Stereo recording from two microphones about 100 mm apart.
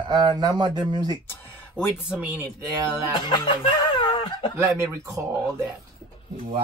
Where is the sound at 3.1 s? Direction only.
55° left (ahead or behind).